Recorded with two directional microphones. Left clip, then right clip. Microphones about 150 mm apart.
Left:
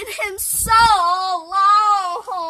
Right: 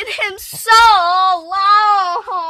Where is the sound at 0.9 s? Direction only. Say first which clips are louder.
Right 5 dB; 35° right (ahead or behind).